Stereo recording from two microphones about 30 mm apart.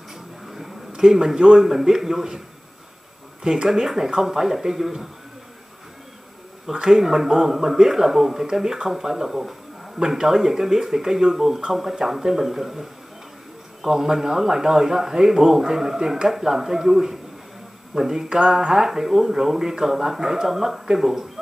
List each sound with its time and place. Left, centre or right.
0.5 s speech: centre
3.6 s a man's voice: centre
6.7 s a man's voice: centre
13.8 s a man's voice: centre